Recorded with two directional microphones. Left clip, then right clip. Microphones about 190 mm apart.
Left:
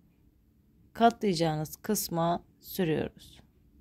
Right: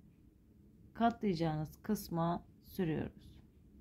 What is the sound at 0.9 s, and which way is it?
Speech, 45° left (ahead or behind).